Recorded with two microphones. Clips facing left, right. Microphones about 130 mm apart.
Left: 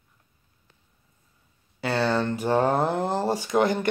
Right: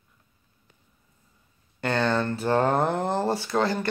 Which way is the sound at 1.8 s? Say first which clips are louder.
Even; 5° left (ahead or behind).